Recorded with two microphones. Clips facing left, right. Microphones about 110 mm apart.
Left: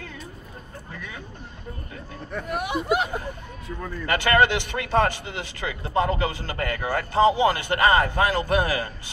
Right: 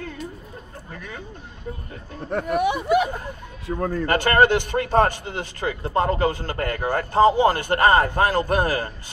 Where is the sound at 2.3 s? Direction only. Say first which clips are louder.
Right 7 dB; 55° right (ahead or behind).